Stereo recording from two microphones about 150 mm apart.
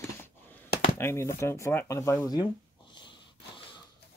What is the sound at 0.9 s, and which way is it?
Speech, 15° left (ahead or behind).